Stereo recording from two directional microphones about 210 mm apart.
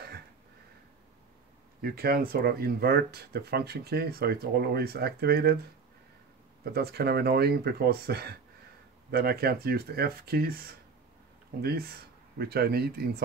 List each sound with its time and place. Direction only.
1.8 s speech: 45° right (ahead or behind)
6.6 s speech: 50° right (ahead or behind)
11.6 s speech: 50° right (ahead or behind)